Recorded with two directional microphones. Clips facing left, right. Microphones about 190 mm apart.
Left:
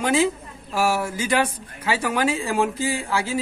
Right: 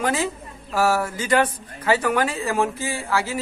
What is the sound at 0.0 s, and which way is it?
Speech, 10° left (ahead or behind).